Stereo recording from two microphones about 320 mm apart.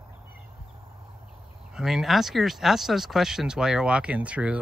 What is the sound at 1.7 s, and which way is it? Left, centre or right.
A man's voice, centre.